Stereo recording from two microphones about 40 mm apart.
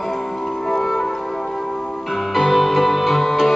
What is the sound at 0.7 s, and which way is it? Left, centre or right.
Music, centre.